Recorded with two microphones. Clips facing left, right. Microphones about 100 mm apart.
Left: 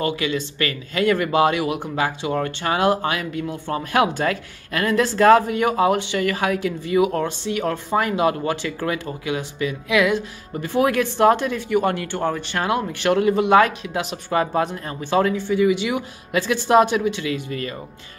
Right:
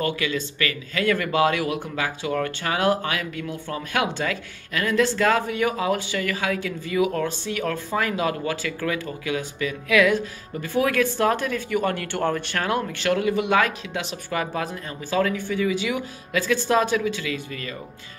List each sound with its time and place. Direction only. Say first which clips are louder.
0.0 s speech: left 2 dB; 30° left (ahead or behind)
10.6 s speech: left 2 dB; 30° left (ahead or behind)
11.7 s speech: left 5 dB; 15° left (ahead or behind)
13.0 s speech: left 5 dB; 30° left (ahead or behind)
16.9 s speech: left 3 dB; 30° left (ahead or behind)